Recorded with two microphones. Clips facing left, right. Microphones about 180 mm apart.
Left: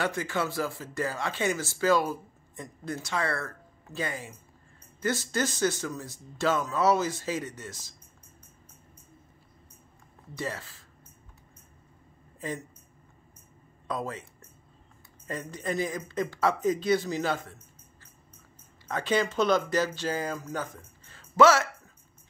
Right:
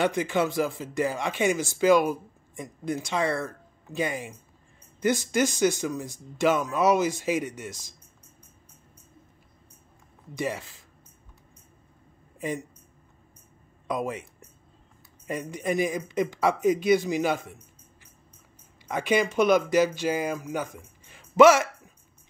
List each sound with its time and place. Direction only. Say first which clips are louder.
0.0 s speech: right 5 dB; 20° right (ahead or behind)
10.3 s speech: right 5 dB; 15° right (ahead or behind)
12.4 s speech: right 4 dB; 15° right (ahead or behind)
13.8 s speech: right 4 dB; 15° right (ahead or behind)
15.2 s speech: right 4 dB; 15° right (ahead or behind)
18.9 s speech: right 3 dB; 15° right (ahead or behind)